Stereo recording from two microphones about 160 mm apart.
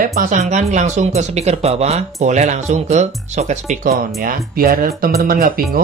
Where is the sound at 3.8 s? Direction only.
60° right (ahead or behind).